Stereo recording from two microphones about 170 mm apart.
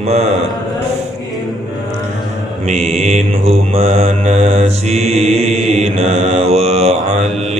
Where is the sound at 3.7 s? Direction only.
55° right (ahead or behind); by 5.1 s 40° right (ahead or behind).